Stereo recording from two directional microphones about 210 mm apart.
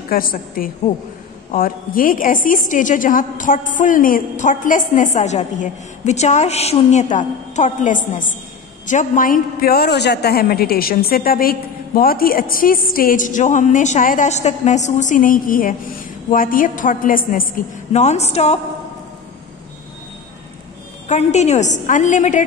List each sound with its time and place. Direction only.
0.1 s a woman's voice: 45° left (ahead or behind)
21.1 s a man's voice: 30° left (ahead or behind)